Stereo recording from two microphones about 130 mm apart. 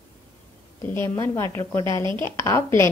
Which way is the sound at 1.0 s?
20° left (ahead or behind).